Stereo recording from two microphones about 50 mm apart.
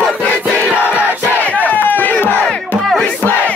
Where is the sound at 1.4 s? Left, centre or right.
Left.